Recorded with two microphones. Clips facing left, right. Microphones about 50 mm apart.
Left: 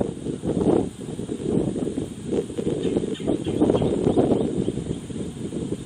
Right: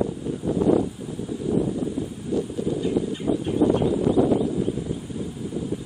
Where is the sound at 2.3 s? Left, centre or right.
Left.